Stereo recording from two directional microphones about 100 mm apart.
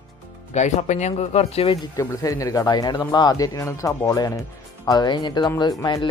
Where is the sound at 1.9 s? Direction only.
35° left (ahead or behind).